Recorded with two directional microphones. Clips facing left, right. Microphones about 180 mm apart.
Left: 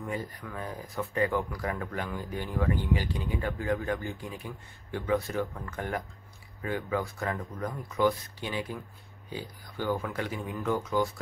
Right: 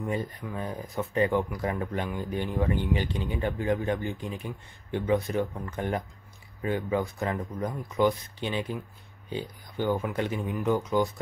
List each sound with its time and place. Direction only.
0.1 s speech: 20° right (ahead or behind)